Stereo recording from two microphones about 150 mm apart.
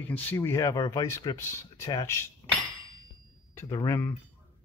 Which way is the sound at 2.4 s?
25° left (ahead or behind).